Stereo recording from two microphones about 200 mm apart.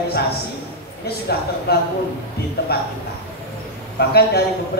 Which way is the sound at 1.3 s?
55° left (ahead or behind).